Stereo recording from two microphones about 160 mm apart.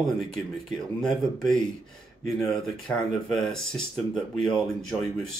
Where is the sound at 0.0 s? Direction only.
Centre (ahead or behind).